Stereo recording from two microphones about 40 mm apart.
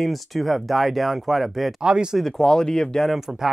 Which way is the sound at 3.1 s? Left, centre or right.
Centre.